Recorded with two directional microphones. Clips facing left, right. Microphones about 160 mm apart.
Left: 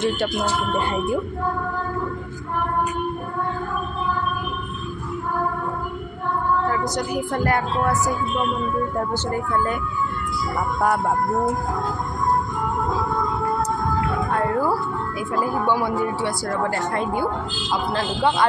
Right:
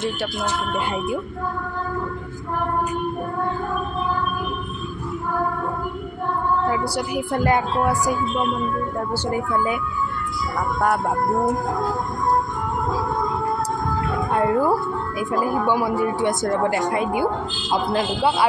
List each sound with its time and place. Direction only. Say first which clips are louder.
6.7 s speech: even; 10° right (ahead or behind)
14.3 s speech: right 4 dB; 20° right (ahead or behind)